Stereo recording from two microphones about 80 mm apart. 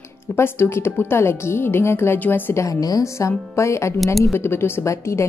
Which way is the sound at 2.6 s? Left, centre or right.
Left.